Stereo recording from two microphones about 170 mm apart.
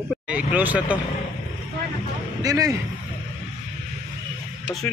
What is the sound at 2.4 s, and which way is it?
Speech, 20° right (ahead or behind).